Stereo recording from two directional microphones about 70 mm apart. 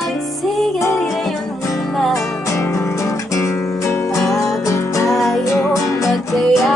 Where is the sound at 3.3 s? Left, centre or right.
Left.